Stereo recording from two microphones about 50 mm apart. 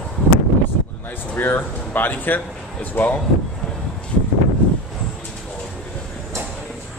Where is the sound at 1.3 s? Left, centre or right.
Left.